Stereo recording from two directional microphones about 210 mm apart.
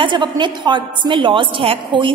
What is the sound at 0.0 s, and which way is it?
A woman's voice, 20° right (ahead or behind).